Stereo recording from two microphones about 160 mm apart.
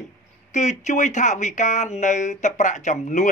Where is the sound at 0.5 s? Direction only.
45° left (ahead or behind).